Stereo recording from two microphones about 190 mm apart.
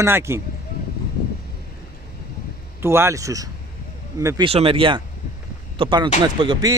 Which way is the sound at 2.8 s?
15° right (ahead or behind).